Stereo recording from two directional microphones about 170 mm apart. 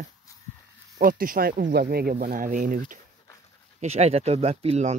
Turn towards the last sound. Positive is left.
turn(degrees=-40)  # may be behind; listen again after turning